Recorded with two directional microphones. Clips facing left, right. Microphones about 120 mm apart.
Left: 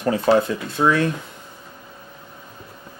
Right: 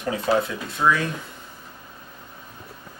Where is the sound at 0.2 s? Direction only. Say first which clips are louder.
Left 4 dB; 30° left (ahead or behind).